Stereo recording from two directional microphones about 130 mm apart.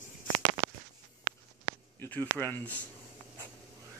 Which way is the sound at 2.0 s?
15° left (ahead or behind).